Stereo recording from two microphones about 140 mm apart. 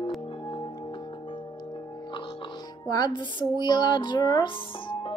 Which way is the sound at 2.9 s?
30° left (ahead or behind).